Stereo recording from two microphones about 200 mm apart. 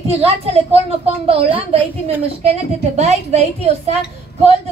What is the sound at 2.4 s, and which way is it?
A woman's voice, 35° right (ahead or behind).